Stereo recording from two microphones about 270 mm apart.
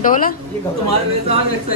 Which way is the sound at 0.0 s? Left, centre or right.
Left.